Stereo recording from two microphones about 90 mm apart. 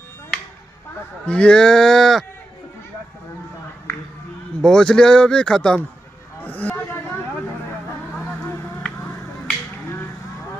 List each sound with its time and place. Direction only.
1.2 s speech: 10° left (ahead or behind)
4.6 s speech: 5° left (ahead or behind)
6.4 s a sound: 15° left (ahead or behind)